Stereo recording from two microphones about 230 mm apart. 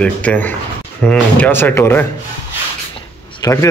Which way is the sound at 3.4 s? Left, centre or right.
Centre.